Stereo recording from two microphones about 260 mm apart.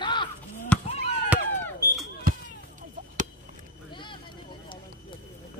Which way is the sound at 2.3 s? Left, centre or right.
Right.